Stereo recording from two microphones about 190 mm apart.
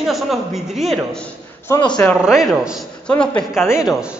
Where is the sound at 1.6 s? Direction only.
20° left (ahead or behind).